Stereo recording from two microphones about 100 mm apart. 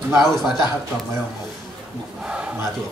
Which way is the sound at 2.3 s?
10° right (ahead or behind).